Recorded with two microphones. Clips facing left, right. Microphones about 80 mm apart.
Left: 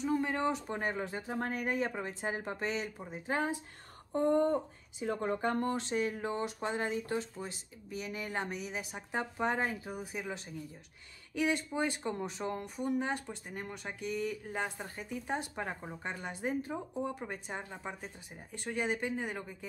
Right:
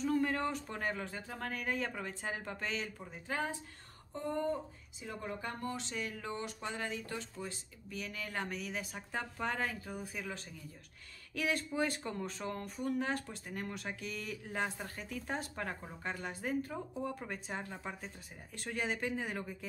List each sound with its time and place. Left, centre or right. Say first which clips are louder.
0.0 s speech: left 1 dB; centre
4.1 s speech: left 8 dB; left; by 19.5 s centre